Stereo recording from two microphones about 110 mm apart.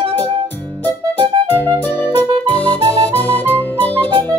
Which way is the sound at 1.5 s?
15° left (ahead or behind).